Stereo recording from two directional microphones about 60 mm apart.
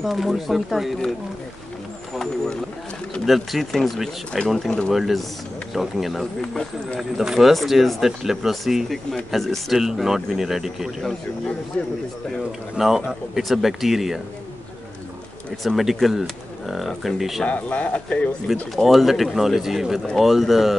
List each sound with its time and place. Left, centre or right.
0.0 s speech: centre
3.3 s speech: centre
12.7 s speech: centre
15.6 s speech: centre
17.5 s speech: left
18.5 s speech: centre